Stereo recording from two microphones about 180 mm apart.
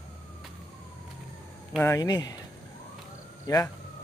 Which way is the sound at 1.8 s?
15° left (ahead or behind).